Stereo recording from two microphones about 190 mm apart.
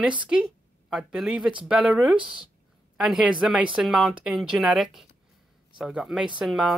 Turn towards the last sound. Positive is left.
turn(degrees=-5)  # may be behind; listen again after turning